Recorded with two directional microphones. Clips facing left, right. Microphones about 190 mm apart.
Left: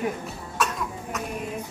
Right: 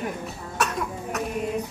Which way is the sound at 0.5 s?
65° right (ahead or behind).